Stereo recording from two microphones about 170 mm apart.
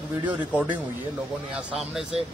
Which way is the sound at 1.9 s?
5° right (ahead or behind).